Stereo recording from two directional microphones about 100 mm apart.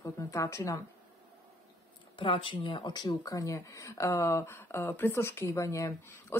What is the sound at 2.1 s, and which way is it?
Speech, 60° left (ahead or behind).